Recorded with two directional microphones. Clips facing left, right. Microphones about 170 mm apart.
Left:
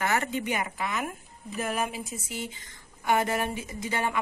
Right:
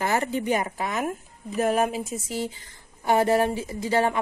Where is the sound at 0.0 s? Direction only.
30° right (ahead or behind).